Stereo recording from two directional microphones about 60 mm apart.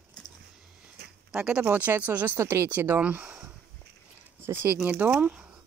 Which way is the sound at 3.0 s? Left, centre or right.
Right.